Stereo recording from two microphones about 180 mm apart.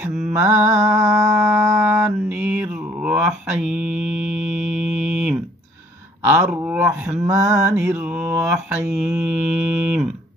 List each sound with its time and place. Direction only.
0.3 s mantra: 15° right (ahead or behind)